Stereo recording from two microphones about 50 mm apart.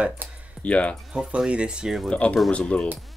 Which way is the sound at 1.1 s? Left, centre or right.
Centre.